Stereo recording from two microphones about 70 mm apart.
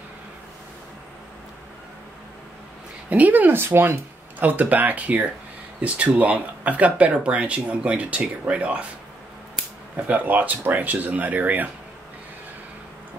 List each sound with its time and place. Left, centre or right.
3.1 s speech: right
10.0 s speech: right